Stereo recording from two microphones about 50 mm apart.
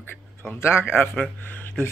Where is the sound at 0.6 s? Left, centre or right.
Left.